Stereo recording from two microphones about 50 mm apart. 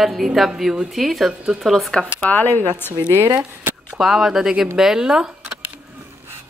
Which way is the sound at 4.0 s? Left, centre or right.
Centre.